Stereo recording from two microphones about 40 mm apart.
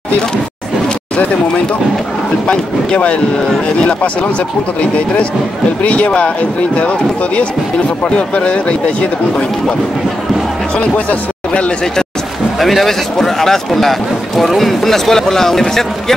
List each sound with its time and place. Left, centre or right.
2.4 s speech: left
5.9 s speech: left
8.4 s speech: left
10.8 s speech: left
12.5 s speech: centre